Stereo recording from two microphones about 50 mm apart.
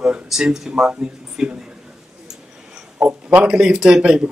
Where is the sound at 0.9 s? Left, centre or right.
Centre.